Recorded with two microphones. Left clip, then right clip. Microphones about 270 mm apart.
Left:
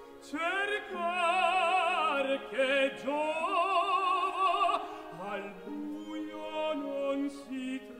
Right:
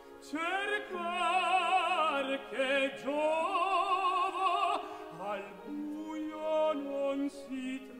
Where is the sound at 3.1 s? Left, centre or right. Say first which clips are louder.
Even; right.